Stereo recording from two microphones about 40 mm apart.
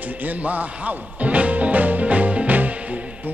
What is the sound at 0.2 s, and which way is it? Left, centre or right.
Music, right.